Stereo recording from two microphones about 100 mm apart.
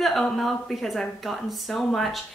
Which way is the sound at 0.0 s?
Centre (ahead or behind).